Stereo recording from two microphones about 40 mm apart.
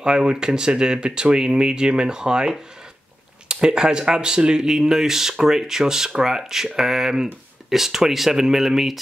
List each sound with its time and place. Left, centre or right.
0.0 s speech: centre
3.6 s speech: centre